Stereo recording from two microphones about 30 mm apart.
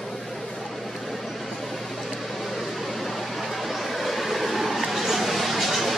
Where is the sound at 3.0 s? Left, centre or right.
Centre.